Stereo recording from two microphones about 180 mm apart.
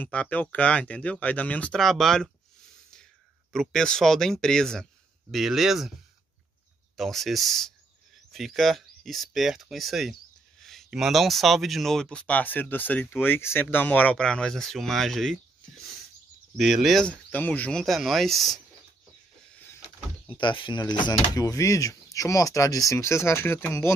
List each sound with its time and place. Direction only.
0.0 s speech: 10° left (ahead or behind)
3.5 s speech: 5° left (ahead or behind)
7.0 s speech: centre (ahead or behind)
20.2 s speech: 25° left (ahead or behind)